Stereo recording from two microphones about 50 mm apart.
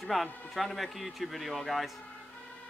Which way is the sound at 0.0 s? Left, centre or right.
Centre.